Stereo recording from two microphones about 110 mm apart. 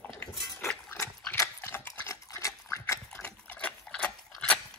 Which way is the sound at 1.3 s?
25° left (ahead or behind).